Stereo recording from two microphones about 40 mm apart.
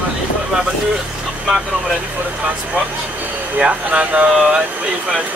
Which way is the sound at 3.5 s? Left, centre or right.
Right.